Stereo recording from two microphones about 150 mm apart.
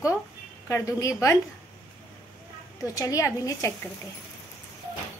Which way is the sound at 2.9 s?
20° left (ahead or behind).